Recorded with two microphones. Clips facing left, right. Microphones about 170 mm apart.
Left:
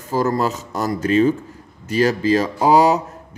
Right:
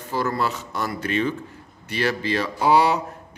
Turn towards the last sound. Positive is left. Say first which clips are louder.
# left 5 dB
turn(degrees=40)  # may be behind; listen again after turning